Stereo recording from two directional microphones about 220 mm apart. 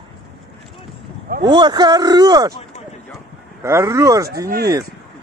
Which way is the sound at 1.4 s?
20° right (ahead or behind).